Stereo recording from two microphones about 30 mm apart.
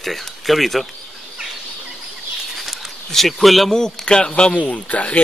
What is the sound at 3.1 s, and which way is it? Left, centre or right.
Speech, centre.